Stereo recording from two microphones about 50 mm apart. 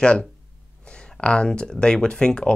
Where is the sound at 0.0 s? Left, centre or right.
Left.